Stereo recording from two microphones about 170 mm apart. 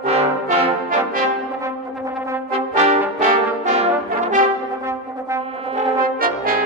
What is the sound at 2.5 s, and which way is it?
Brass instrument, 40° right (ahead or behind).